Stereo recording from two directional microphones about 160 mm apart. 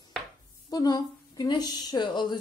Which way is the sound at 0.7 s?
25° left (ahead or behind).